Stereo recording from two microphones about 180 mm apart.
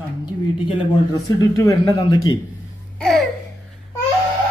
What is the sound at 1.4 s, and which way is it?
Speech, 20° left (ahead or behind).